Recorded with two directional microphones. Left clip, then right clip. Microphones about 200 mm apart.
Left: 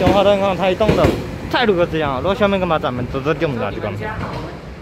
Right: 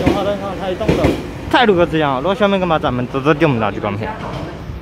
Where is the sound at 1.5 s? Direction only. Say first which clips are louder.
Right 4 dB; 10° right (ahead or behind).